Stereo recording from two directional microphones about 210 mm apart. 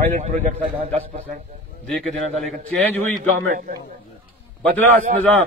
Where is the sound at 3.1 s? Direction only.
40° right (ahead or behind).